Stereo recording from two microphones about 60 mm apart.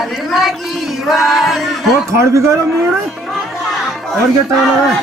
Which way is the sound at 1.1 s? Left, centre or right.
Centre.